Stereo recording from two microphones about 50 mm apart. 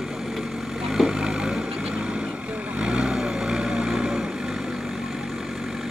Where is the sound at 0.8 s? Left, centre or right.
Centre.